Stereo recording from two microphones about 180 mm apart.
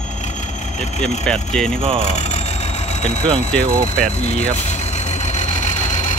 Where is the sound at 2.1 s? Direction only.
40° left (ahead or behind).